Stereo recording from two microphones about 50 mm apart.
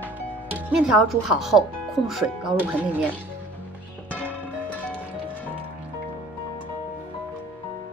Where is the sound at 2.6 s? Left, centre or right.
Right.